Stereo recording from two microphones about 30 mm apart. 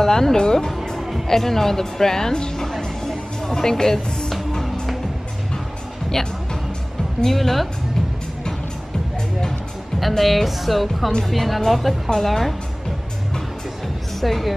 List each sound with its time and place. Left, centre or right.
0.0 s speech: centre
0.7 s music: centre
1.2 s speech: centre
2.6 s a sound: centre
6.2 s speech: centre
9.9 s speech: centre
14.2 s speech: centre